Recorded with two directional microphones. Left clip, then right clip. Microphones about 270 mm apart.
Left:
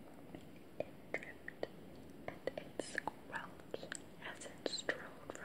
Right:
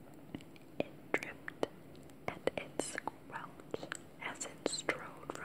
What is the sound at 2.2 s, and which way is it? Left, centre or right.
Whispering, centre.